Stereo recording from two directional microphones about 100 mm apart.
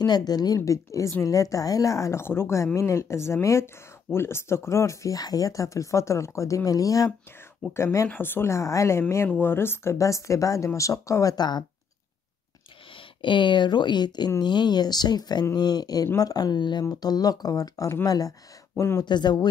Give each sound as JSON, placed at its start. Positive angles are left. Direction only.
{"t": 0.0, "sound": "speech", "side_deg": 40}
{"t": 12.9, "sound": "speech", "side_deg": 55}
{"t": 19.0, "sound": "speech", "side_deg": 45}